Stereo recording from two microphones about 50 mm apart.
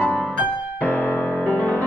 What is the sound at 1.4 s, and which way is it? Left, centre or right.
Music, left.